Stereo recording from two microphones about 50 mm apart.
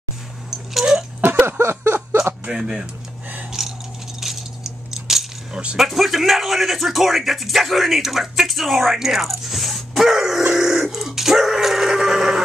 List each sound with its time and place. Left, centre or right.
0.5 s dog: centre
1.2 s a sound: right
1.6 s a sound: right
2.4 s speech: centre
3.6 s a sound: centre
4.2 s coin: centre
5.5 s keys jangling: centre
5.8 s speech: centre
10.5 s dog: centre